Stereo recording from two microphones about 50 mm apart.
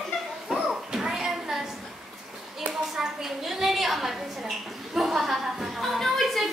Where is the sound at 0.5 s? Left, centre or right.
Centre.